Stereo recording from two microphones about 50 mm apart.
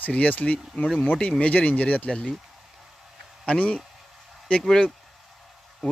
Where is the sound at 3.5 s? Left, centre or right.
Left.